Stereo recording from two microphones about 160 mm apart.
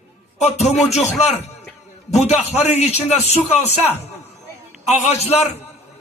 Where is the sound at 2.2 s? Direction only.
45° left (ahead or behind).